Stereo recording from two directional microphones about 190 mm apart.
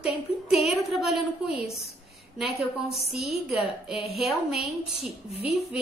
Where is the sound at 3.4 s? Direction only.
5° right (ahead or behind).